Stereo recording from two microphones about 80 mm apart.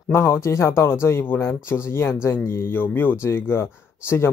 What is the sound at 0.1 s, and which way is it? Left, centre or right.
Speech, left.